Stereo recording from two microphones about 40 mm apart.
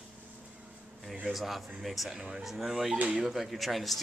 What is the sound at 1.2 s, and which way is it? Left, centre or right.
Speech, centre.